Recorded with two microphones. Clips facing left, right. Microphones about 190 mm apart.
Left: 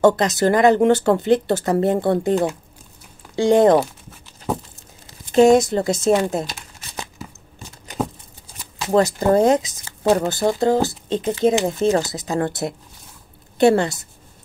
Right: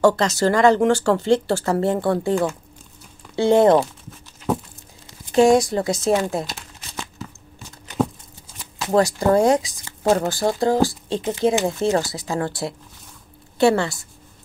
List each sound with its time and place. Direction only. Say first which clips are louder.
0.0 s speech: left 1 dB; 15° left (ahead or behind)
5.3 s speech: left 2 dB; 20° left (ahead or behind)
7.0 s a sound: even; 20° left (ahead or behind)
8.9 s speech: left 1 dB; 20° left (ahead or behind)
13.6 s speech: left 2 dB; 20° left (ahead or behind)